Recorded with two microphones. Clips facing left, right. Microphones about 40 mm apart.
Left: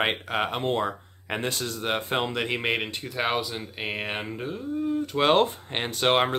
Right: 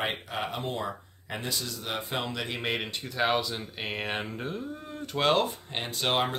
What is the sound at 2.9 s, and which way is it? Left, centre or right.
Speech, centre.